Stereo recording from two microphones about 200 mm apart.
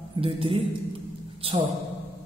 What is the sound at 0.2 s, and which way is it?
A man's voice, 25° right (ahead or behind).